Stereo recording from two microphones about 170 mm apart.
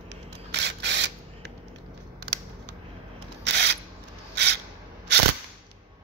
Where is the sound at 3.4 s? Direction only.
90° right.